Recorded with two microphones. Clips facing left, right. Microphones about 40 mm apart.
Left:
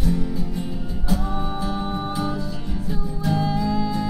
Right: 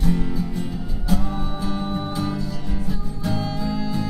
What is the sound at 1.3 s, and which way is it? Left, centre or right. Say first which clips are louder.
Music: left 1 dB; centre.